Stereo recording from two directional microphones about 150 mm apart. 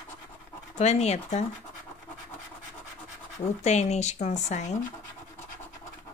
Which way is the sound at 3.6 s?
50° left (ahead or behind).